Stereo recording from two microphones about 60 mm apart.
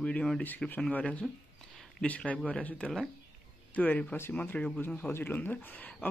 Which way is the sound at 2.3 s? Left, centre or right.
Left.